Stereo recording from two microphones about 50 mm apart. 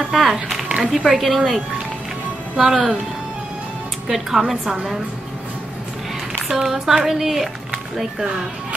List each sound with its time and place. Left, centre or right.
0.1 s a woman's voice: centre
0.7 s a woman's voice: centre
4.1 s a woman's voice: centre
6.5 s a woman's voice: centre